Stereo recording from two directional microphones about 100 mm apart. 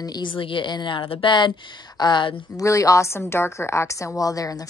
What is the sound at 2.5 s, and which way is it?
A woman's voice, 30° left (ahead or behind).